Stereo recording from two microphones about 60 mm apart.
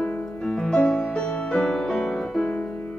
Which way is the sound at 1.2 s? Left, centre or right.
Centre.